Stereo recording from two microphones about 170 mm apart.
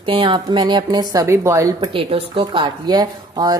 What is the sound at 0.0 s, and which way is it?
Speech, 30° right (ahead or behind).